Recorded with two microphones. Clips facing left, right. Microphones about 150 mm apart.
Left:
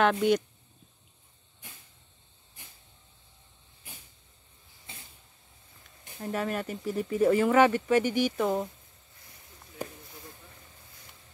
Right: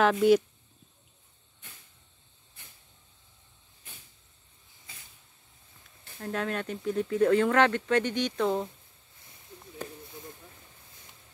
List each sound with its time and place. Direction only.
0.0 s speech: centre (ahead or behind)
3.9 s vehicle: 10° left (ahead or behind)
4.9 s vehicle: 25° left (ahead or behind)
6.0 s speech: 10° left (ahead or behind)